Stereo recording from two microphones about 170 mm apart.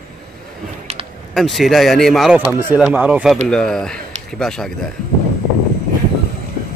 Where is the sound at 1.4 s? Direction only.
Centre (ahead or behind).